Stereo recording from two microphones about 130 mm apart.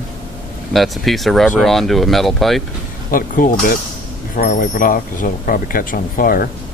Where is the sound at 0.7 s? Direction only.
Centre (ahead or behind).